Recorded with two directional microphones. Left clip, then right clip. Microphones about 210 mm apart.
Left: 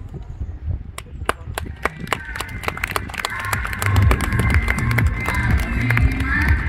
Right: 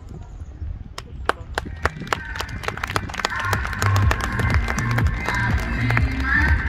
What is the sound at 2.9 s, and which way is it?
Music, 45° left (ahead or behind).